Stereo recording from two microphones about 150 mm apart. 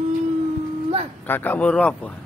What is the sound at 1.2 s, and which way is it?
Speech, 15° left (ahead or behind).